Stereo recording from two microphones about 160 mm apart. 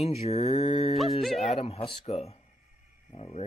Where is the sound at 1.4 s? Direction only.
40° left (ahead or behind).